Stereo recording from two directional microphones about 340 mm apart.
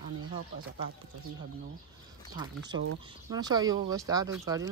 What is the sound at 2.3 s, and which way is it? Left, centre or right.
Speech, centre.